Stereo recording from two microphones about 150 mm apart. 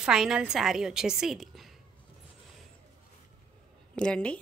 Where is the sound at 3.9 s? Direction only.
5° left (ahead or behind).